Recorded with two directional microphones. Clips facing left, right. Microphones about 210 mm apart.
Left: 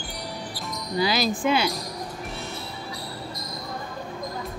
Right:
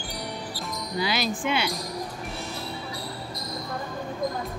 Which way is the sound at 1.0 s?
35° left (ahead or behind).